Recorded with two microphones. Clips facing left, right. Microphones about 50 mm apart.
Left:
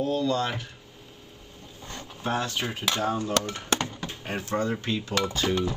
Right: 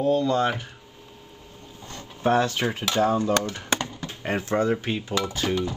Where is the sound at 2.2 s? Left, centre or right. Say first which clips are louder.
Right 7 dB; right.